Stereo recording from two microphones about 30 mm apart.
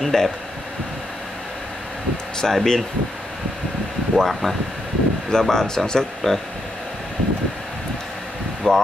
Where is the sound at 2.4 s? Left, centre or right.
Centre.